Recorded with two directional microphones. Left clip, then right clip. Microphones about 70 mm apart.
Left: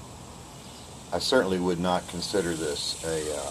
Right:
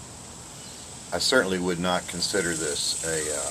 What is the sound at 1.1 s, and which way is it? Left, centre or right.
Speech, centre.